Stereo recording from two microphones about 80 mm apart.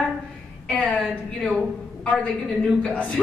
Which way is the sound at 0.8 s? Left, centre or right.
Centre.